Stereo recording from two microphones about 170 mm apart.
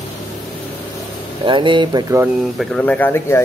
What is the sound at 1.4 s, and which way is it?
Speech, 30° right (ahead or behind).